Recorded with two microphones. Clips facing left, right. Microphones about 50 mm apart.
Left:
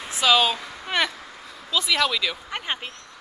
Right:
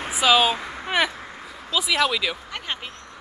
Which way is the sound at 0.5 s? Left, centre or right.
Right.